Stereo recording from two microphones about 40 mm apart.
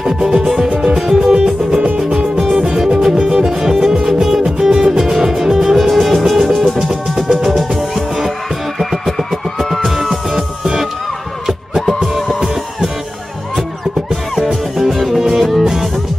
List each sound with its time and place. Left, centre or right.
0.0 s music: centre
2.0 s music: right
2.3 s music: centre
3.2 s music: right
3.4 s music: centre
6.9 s music: centre
7.5 s music: centre
11.7 s music: centre
14.3 s music: centre